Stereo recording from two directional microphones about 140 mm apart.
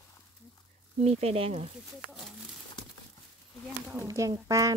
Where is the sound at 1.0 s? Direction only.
45° right (ahead or behind).